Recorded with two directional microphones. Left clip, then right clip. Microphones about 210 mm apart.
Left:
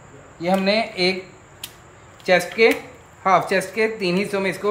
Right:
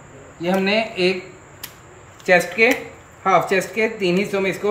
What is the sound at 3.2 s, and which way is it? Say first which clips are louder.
Speech: right 1 dB; 15° left (ahead or behind).